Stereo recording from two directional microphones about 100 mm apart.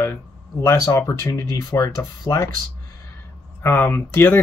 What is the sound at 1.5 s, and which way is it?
Speech, 40° left (ahead or behind).